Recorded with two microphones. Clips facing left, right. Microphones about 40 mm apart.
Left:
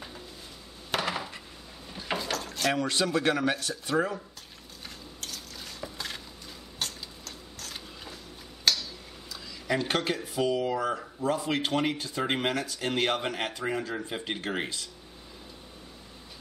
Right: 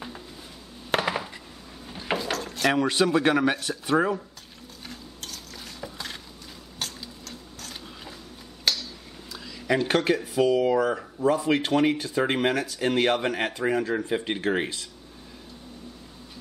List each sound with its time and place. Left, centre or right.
0.9 s coin: right
2.1 s drawer open or close: centre
2.6 s a man's voice: right
4.8 s stir: centre
6.8 s a sound: centre
9.3 s speech: centre